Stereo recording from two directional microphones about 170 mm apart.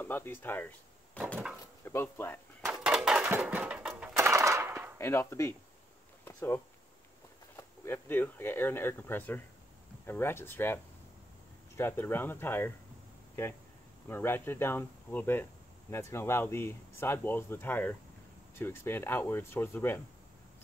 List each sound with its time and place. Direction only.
0.0 s speech: 10° left (ahead or behind)
1.1 s wood: 5° left (ahead or behind)
1.9 s speech: 15° left (ahead or behind)
2.8 s a sound: 5° right (ahead or behind)
4.9 s speech: 15° left (ahead or behind)
14.0 s speech: 10° left (ahead or behind)